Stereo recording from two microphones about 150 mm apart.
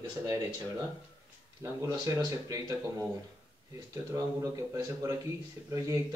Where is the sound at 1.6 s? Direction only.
20° right (ahead or behind).